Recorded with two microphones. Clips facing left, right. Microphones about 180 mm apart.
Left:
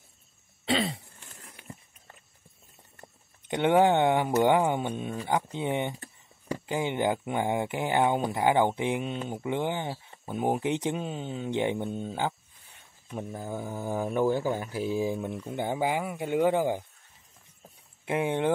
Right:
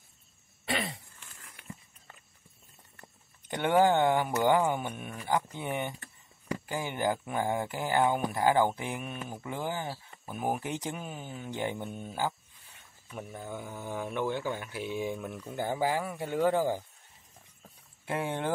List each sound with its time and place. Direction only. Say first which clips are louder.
0.7 s throat clearing: left 6 dB; 25° left (ahead or behind)
1.4 s a sound: even; 30° left (ahead or behind)
3.0 s speech: left 4 dB; 20° left (ahead or behind)
13.3 s speech: left 4 dB; 35° left (ahead or behind); by 16.8 s 15° left (ahead or behind)
18.0 s speech: left 5 dB; 20° left (ahead or behind)